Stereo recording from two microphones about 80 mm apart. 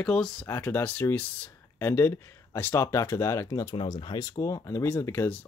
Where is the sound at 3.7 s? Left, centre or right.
Left.